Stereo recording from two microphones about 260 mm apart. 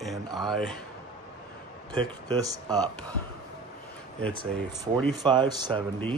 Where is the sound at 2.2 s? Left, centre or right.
Centre.